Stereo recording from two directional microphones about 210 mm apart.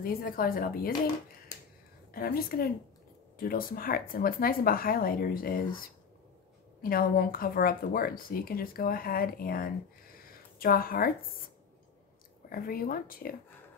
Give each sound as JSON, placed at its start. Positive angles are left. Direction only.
{"t": 0.0, "sound": "speech", "side_deg": 45}
{"t": 2.1, "sound": "speech", "side_deg": 45}
{"t": 6.8, "sound": "speech", "side_deg": 45}
{"t": 10.1, "sound": "a sound", "side_deg": 45}
{"t": 12.4, "sound": "speech", "side_deg": 45}